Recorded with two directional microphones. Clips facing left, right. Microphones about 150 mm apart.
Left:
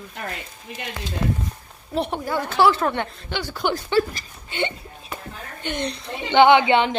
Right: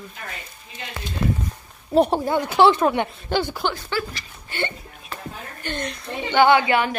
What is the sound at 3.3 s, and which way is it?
Speech, 45° right (ahead or behind).